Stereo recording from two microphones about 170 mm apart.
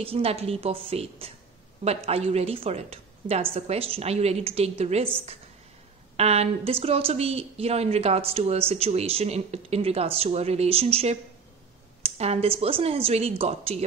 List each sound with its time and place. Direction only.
0.0 s a woman's voice: 35° right (ahead or behind)
6.1 s a woman's voice: 40° right (ahead or behind)